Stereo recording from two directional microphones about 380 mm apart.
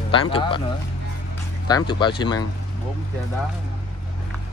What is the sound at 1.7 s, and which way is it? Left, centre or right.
Speech, centre.